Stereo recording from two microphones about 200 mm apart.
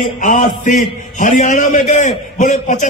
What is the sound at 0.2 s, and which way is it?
A man's voice, 40° left (ahead or behind).